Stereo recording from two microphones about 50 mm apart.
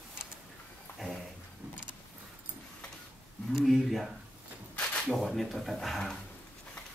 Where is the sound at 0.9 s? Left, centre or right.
Left.